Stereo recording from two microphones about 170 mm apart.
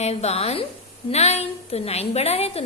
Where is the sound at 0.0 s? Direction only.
40° left (ahead or behind).